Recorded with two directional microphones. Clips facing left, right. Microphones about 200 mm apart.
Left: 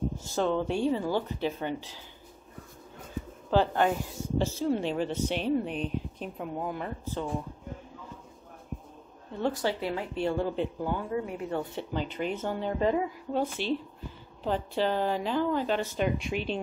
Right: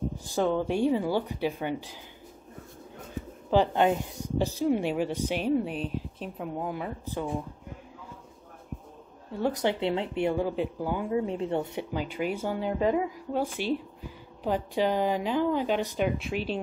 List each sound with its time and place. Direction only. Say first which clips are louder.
0.3 s speech: right 2 dB; 10° right (ahead or behind)
3.4 s speech: right 2 dB; 15° right (ahead or behind)
9.4 s speech: right 2 dB; 20° right (ahead or behind)
11.1 s a woman's voice: right 4 dB; 25° right (ahead or behind)
11.9 s speech: even; 10° right (ahead or behind)
16.2 s speech: right 1 dB; centre (ahead or behind)